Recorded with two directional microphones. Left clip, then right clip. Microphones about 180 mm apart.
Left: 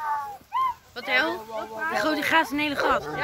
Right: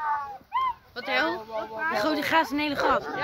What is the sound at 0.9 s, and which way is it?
Speech, 55° right (ahead or behind).